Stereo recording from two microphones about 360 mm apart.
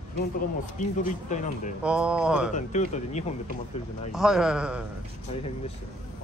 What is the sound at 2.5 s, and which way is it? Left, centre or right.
Speech, centre.